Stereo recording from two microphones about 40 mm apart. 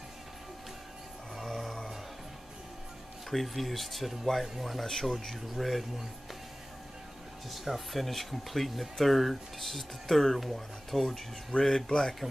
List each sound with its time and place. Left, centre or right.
1.3 s music: centre
3.3 s speech: centre
7.5 s speech: centre
11.5 s speech: left
11.9 s speech: centre